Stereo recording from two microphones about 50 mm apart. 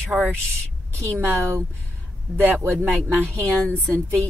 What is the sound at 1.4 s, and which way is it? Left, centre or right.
Speech, right.